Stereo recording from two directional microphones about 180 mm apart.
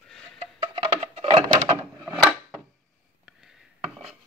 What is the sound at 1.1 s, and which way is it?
Music, 30° right (ahead or behind).